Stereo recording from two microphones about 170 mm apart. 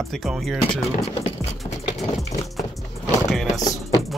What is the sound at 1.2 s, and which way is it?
Music, 40° left (ahead or behind).